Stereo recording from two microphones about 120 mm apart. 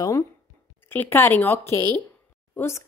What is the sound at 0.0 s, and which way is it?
Speech, 25° left (ahead or behind).